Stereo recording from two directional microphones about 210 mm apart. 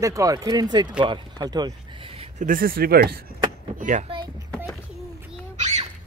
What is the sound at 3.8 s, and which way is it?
Speech, 35° right (ahead or behind).